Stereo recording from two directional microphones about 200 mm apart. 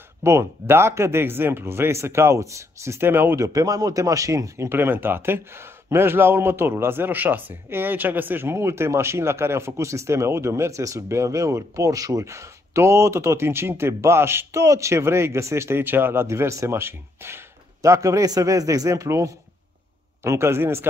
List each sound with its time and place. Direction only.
0.2 s a man's voice: 15° right (ahead or behind)